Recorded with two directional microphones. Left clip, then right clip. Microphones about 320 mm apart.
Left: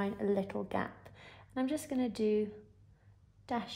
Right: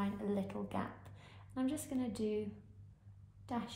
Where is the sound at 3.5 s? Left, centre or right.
Left.